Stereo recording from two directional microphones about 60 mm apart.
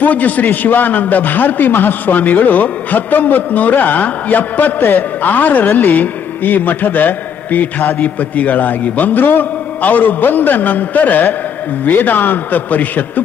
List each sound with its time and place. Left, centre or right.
0.0 s a man's voice: left